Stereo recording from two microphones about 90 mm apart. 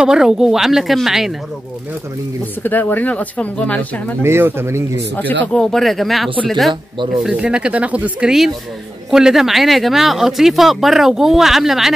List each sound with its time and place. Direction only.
0.0 s speech: 10° right (ahead or behind)
2.6 s speech: 20° left (ahead or behind)
4.2 s speech: 25° right (ahead or behind)
5.1 s speech: 20° left (ahead or behind)
5.5 s speech: 5° left (ahead or behind)